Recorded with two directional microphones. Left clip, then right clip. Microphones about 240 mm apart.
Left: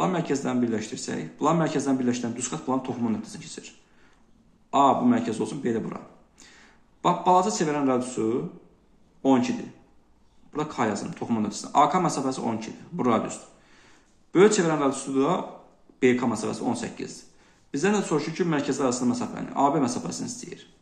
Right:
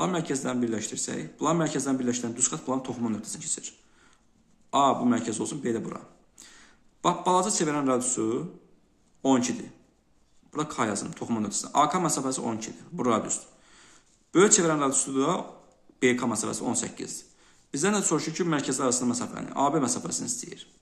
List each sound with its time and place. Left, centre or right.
0.0 s speech: centre